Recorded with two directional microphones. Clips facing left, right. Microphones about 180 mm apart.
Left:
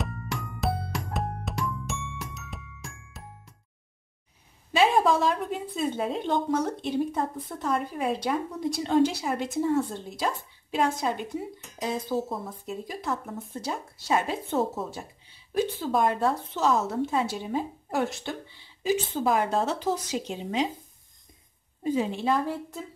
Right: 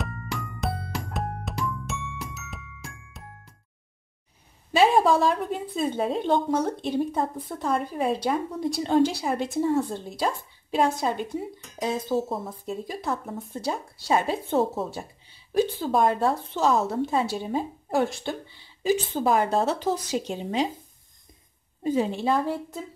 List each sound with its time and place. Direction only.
0.0 s music: centre (ahead or behind)
4.7 s a woman's voice: 35° right (ahead or behind)
12.1 s a woman's voice: 30° right (ahead or behind)
21.8 s a woman's voice: 35° right (ahead or behind)